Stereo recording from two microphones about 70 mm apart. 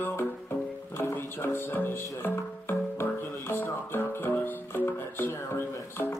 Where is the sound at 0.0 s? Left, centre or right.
Left.